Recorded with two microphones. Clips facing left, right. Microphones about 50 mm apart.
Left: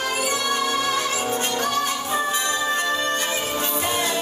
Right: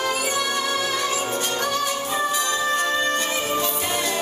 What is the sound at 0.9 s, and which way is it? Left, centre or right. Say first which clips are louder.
Music: left 1 dB; left.